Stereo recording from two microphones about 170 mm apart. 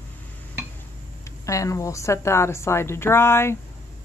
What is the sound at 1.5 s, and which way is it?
Speech, 20° left (ahead or behind).